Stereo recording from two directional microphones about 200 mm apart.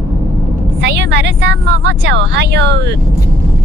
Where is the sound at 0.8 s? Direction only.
60° right (ahead or behind).